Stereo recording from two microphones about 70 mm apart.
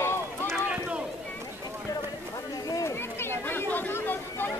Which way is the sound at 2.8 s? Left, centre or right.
Left.